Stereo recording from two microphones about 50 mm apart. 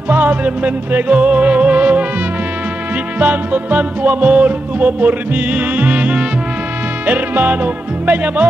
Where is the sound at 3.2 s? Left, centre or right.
Right.